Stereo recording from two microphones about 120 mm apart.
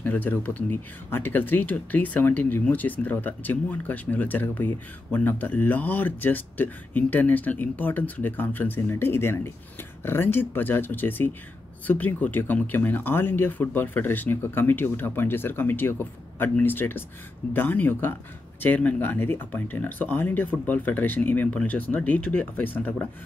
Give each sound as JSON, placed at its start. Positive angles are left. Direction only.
{"t": 0.0, "sound": "speech", "side_deg": 15}